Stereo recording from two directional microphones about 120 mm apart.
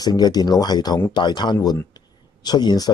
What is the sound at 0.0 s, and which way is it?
Speech, 35° left (ahead or behind).